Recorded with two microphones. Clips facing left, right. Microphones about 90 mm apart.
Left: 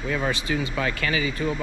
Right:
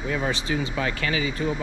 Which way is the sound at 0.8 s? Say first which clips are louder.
Left 1 dB; 30° right (ahead or behind).